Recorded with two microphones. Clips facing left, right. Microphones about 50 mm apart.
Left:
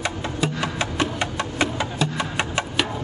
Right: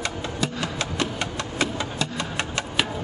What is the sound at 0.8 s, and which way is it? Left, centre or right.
Music, left.